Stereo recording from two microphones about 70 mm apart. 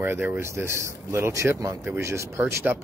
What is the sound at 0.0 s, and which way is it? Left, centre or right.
A man's voice, right.